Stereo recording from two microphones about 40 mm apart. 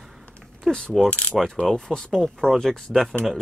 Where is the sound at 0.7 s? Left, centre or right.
Centre.